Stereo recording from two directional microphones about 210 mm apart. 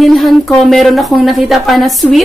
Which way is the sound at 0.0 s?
Centre (ahead or behind).